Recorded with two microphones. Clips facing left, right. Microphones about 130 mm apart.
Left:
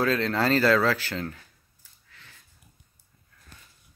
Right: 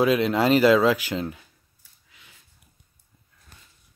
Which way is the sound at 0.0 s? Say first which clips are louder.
Right 4 dB; 15° right (ahead or behind).